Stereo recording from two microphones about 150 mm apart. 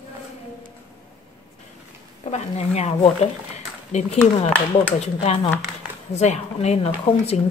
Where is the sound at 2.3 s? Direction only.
45° left (ahead or behind).